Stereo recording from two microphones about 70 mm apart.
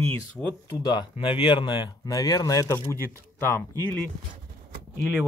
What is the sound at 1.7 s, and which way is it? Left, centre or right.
Speech, left.